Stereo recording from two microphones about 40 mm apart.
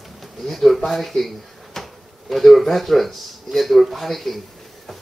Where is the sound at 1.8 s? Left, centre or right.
Centre.